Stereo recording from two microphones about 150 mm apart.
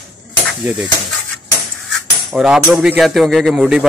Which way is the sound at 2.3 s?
5° right (ahead or behind).